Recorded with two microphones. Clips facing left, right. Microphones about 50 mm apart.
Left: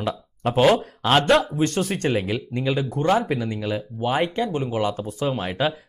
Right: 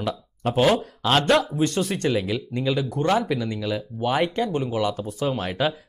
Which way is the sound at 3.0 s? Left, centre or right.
Centre.